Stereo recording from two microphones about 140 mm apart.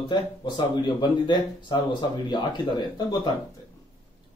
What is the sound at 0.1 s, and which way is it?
Speech, 35° left (ahead or behind).